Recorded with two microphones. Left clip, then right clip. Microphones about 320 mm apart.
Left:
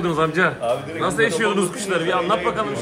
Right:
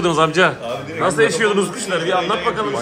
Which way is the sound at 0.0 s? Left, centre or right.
Centre.